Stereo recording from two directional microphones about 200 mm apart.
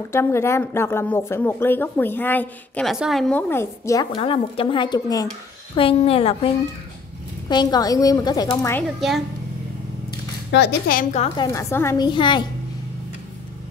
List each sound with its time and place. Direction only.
0.1 s a woman's voice: 15° left (ahead or behind)
8.8 s a woman's voice: centre (ahead or behind)
10.5 s a woman's voice: 55° left (ahead or behind); by 11.4 s 30° left (ahead or behind)
11.4 s a woman's voice: 15° left (ahead or behind)